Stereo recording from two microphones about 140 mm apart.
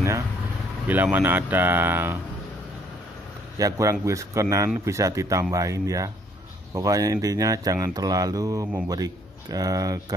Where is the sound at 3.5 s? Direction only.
25° right (ahead or behind).